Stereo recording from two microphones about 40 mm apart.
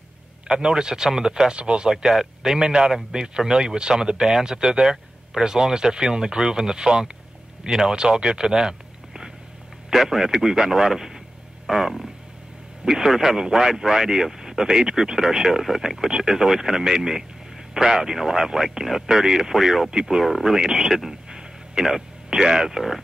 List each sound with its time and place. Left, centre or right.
0.5 s speech: centre
2.0 s a man's voice: centre
8.2 s a sound: centre
9.9 s speech: centre
11.6 s a sound: centre
12.8 s speech: centre
19.9 s speech: centre
21.3 s a sound: centre
21.8 s speech: centre